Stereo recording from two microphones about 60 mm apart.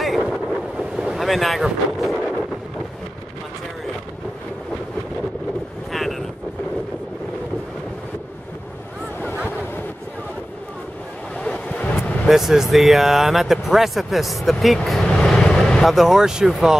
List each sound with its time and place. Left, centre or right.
0.0 s boat: centre
5.9 s vehicle: centre
11.4 s waves: left
12.3 s speech: centre
15.0 s vehicle: centre
15.9 s speech: centre